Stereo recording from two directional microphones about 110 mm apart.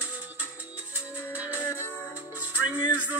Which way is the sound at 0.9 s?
15° right (ahead or behind).